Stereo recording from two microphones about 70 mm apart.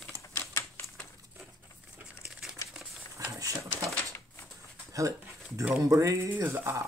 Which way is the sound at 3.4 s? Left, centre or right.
Right.